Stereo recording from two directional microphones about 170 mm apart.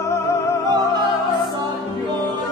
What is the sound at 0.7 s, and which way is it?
Music, 25° right (ahead or behind).